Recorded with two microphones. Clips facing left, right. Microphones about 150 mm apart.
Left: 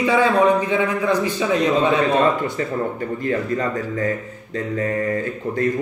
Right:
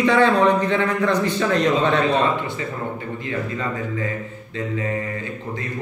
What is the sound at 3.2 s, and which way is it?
Speech, 45° left (ahead or behind).